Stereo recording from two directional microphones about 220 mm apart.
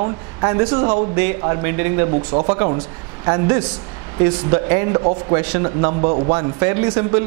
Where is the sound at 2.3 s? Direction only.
25° right (ahead or behind).